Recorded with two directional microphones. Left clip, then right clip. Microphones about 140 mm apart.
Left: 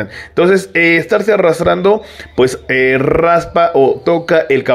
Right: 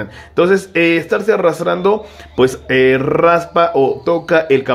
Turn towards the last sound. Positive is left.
turn(degrees=20)  # may be behind; listen again after turning